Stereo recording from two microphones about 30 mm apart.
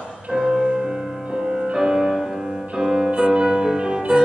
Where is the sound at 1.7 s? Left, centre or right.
Centre.